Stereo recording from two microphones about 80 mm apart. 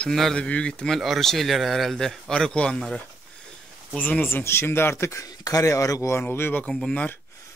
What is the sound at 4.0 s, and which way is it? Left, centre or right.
Speech, left.